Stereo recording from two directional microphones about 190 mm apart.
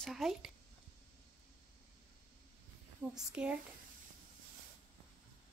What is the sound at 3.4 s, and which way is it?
Speech, 5° right (ahead or behind).